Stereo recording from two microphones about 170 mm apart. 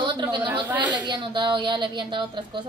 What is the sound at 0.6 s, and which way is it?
Speech, 10° right (ahead or behind).